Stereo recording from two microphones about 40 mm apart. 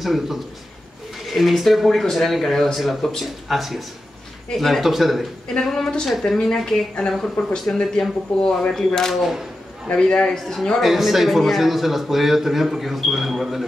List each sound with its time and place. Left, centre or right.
0.0 s a man's voice: centre
5.6 s speech: centre
9.1 s speech: centre
9.8 s a man's voice: left
10.3 s a man's voice: centre
10.8 s a man's voice: centre